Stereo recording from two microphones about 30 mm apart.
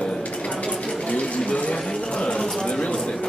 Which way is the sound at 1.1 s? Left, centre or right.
Left.